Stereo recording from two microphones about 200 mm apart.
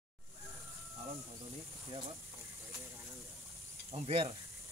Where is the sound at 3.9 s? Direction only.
30° right (ahead or behind).